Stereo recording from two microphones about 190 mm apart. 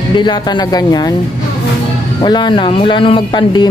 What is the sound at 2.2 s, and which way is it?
Speech, 25° left (ahead or behind).